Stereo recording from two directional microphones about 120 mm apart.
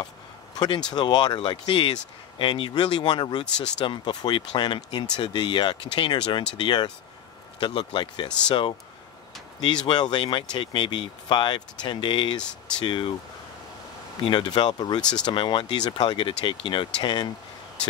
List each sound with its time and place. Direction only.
0.9 s speech: 35° left (ahead or behind)
12.4 s speech: 5° left (ahead or behind)
12.8 s speech: 45° left (ahead or behind)
14.2 s speech: 40° left (ahead or behind)
15.0 s speech: 5° left (ahead or behind)
15.2 s speech: 40° left (ahead or behind)